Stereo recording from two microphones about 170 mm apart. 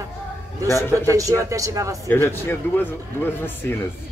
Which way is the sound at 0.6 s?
15° left (ahead or behind).